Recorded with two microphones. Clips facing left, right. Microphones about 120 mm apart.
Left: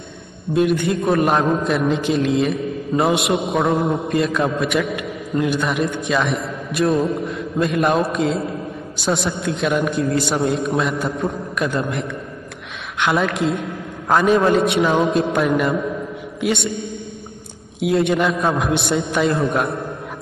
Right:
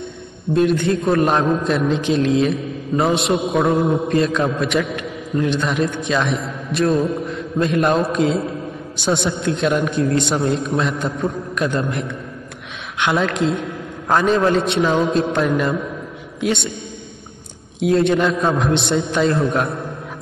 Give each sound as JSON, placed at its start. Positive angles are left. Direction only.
{"t": 0.5, "sound": "a man's voice", "side_deg": 5}
{"t": 7.2, "sound": "mantra", "side_deg": 0}
{"t": 8.9, "sound": "a man's voice", "side_deg": 0}
{"t": 17.7, "sound": "a man's voice", "side_deg": 5}